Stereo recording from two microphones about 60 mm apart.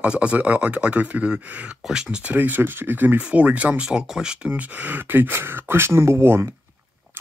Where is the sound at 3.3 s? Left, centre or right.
Right.